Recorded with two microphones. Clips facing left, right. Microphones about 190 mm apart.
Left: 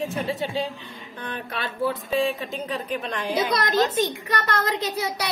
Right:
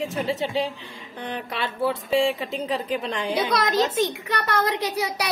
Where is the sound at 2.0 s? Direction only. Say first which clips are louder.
Right 2 dB; 25° right (ahead or behind).